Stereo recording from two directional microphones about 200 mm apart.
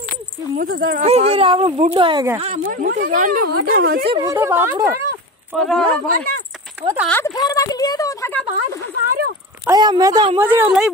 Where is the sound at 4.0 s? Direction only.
25° right (ahead or behind).